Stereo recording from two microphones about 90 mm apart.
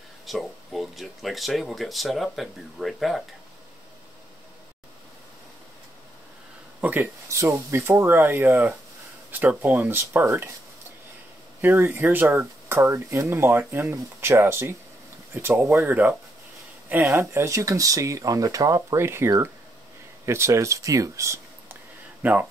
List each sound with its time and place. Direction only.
0.3 s speech: centre (ahead or behind)
6.8 s speech: 20° right (ahead or behind)
7.2 s speech: 35° right (ahead or behind)
11.6 s speech: 25° right (ahead or behind)
15.9 s speech: 20° right (ahead or behind); by 18.8 s 40° right (ahead or behind)
18.9 s speech: 30° right (ahead or behind)
22.2 s speech: 20° right (ahead or behind)